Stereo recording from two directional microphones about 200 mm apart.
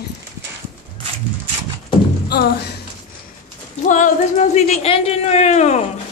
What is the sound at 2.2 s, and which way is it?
Speech, 55° left (ahead or behind).